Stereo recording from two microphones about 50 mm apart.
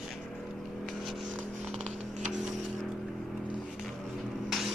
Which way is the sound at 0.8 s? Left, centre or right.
Centre.